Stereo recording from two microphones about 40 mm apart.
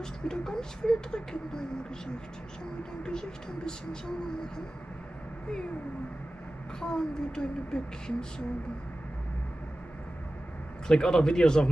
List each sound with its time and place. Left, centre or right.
0.0 s speech: centre
3.0 s speech: centre
6.8 s speech: centre
10.9 s speech: centre